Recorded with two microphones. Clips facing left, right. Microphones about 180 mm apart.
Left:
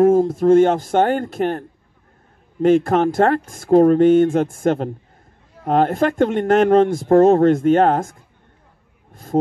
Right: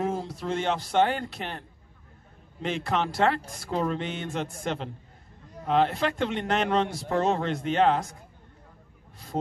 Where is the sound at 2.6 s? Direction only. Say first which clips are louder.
Left 14 dB; 50° left (ahead or behind).